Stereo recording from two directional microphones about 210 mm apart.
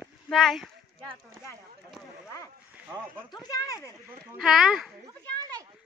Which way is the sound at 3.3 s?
20° left (ahead or behind).